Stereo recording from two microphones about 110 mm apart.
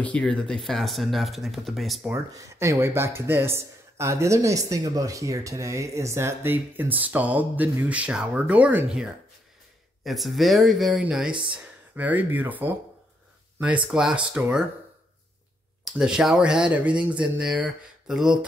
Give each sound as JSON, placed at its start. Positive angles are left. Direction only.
{"t": 0.0, "sound": "speech", "side_deg": 10}
{"t": 2.3, "sound": "speech", "side_deg": -30}
{"t": 13.9, "sound": "speech", "side_deg": -10}
{"t": 15.8, "sound": "speech", "side_deg": -5}